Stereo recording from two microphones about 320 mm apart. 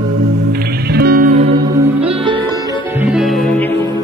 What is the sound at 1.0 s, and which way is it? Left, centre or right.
Music, right.